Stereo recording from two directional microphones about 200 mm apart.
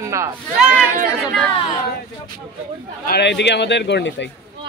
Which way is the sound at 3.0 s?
55° left (ahead or behind).